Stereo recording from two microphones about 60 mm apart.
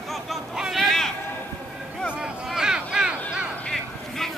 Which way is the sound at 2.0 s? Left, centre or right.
Centre.